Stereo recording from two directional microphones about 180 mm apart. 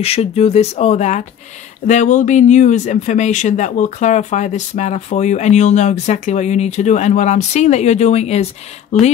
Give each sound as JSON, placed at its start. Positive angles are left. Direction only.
{"t": 0.0, "sound": "speech", "side_deg": 35}